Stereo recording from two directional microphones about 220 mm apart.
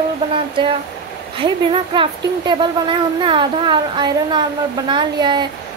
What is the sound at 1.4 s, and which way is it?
A woman's voice, 25° right (ahead or behind).